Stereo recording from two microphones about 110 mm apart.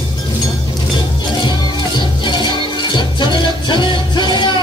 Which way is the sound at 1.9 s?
45° left (ahead or behind).